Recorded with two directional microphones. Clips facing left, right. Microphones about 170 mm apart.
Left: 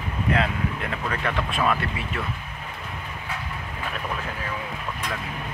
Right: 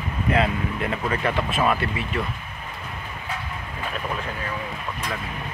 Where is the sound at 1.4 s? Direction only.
5° right (ahead or behind).